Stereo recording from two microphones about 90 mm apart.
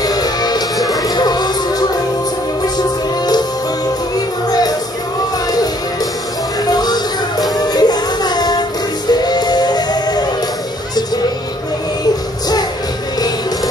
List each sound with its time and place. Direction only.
0.0 s music: 45° left (ahead or behind)
4.5 s music: 45° left (ahead or behind)
6.7 s music: 50° left (ahead or behind)